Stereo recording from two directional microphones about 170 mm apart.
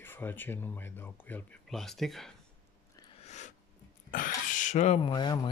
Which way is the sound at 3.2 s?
40° left (ahead or behind).